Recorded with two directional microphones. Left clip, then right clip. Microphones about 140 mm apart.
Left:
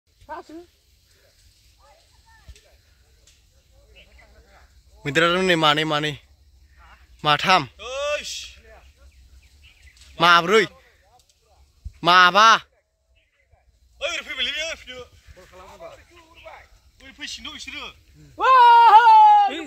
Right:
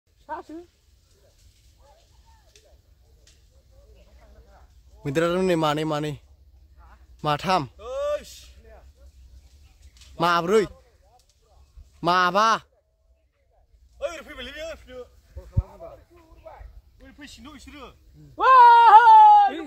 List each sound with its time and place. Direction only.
0.3 s dog: centre (ahead or behind)
5.0 s a man's voice: 5° right (ahead or behind)
7.7 s a sound: 45° right (ahead or behind)
10.1 s speech: 5° right (ahead or behind)
12.0 s a man's voice: 5° right (ahead or behind)
13.9 s a sound: 45° right (ahead or behind)
17.0 s speech: 40° right (ahead or behind)
18.3 s speech: centre (ahead or behind)
18.8 s whimper: 5° left (ahead or behind)